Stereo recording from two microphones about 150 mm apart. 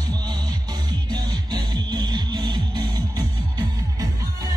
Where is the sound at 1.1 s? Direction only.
30° right (ahead or behind).